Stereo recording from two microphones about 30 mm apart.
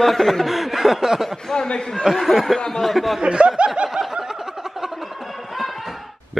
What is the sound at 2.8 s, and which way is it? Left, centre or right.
Speech, centre.